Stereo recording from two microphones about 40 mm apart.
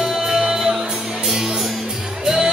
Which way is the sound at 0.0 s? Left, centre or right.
Centre.